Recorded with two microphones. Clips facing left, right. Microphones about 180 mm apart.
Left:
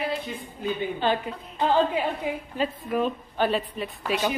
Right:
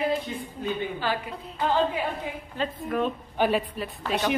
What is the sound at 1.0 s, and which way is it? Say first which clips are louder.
Speech: left 5 dB; 25° left (ahead or behind).